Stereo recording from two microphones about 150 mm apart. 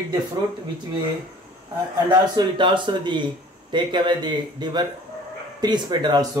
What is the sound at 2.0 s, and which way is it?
Speech, 30° right (ahead or behind).